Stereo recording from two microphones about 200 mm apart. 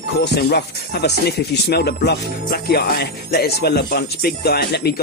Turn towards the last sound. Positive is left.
turn(degrees=50)  # may be behind; listen again after turning